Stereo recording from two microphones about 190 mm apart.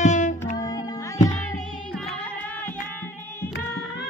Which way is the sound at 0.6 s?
20° left (ahead or behind).